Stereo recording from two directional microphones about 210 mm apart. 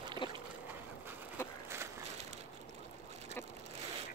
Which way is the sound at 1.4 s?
10° left (ahead or behind).